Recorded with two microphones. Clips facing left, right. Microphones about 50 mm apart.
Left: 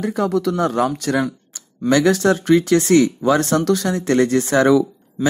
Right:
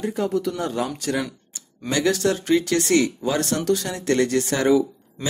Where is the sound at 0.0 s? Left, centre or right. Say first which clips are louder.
Left 4 dB; left.